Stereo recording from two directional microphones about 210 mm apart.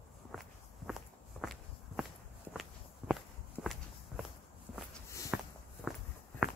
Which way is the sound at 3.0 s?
5° right (ahead or behind).